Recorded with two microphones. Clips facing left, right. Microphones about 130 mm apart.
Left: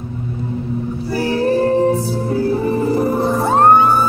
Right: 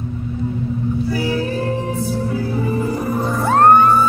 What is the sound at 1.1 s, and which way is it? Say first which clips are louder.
Music: left 8 dB; 35° left (ahead or behind).